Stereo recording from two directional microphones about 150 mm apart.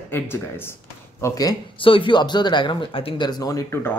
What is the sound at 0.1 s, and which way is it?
Speech, 15° left (ahead or behind).